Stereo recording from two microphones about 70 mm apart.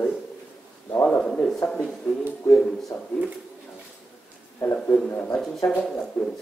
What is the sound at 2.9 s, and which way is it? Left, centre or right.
Speech, centre.